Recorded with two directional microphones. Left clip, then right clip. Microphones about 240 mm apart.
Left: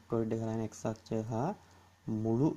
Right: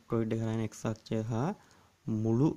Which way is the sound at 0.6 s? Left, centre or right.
Right.